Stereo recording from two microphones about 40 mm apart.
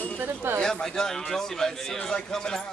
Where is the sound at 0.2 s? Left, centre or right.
Right.